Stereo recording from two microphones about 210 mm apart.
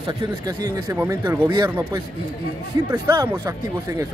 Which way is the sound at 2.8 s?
15° right (ahead or behind).